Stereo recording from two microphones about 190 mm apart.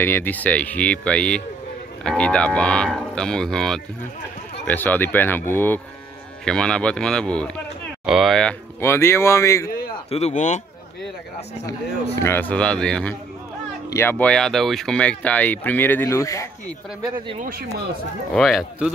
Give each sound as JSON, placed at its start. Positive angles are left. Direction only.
{"t": 0.0, "sound": "speech", "side_deg": 10}
{"t": 10.0, "sound": "speech", "side_deg": 35}
{"t": 12.2, "sound": "speech", "side_deg": 10}
{"t": 17.4, "sound": "speech", "side_deg": -50}
{"t": 18.3, "sound": "speech", "side_deg": 0}